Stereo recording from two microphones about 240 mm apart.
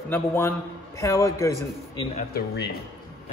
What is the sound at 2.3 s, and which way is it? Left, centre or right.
Speech, left.